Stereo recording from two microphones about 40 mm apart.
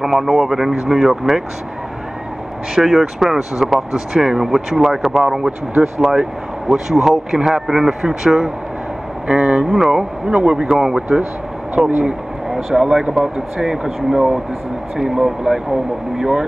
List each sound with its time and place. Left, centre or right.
0.0 s speech: centre
2.7 s speech: centre
9.3 s speech: right
9.7 s speech: centre
10.3 s speech: right
10.6 s speech: centre
12.0 s speech: centre